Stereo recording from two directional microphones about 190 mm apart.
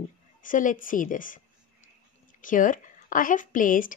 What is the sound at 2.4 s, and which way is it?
Speech, 45° left (ahead or behind).